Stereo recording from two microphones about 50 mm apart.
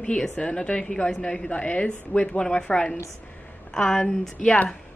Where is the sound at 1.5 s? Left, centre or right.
Left.